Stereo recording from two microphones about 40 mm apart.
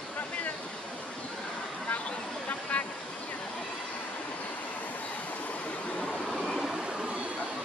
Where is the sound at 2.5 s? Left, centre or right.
Left.